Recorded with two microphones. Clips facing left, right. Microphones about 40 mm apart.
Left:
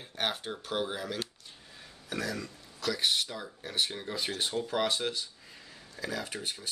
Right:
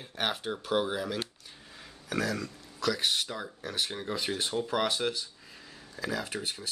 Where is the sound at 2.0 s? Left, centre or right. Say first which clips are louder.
Right 4 dB; right.